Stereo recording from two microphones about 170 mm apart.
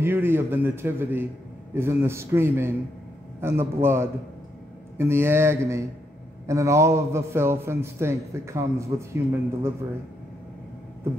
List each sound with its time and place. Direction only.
0.0 s a man's voice: 15° right (ahead or behind)